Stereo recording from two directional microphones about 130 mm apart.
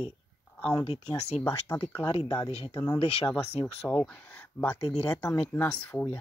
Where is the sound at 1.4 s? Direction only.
20° left (ahead or behind).